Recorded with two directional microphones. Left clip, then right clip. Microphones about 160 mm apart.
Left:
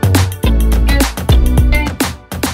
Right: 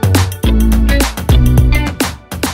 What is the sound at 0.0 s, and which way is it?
Music, centre (ahead or behind).